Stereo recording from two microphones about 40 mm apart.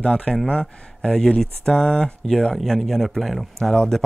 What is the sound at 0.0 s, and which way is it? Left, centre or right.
A man's voice, centre.